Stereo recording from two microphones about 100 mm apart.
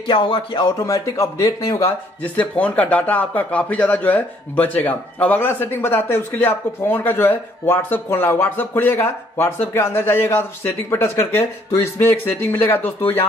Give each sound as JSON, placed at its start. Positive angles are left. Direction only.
{"t": 0.0, "sound": "speech", "side_deg": 55}
{"t": 0.8, "sound": "speech", "side_deg": 30}
{"t": 1.9, "sound": "a man's voice", "side_deg": 15}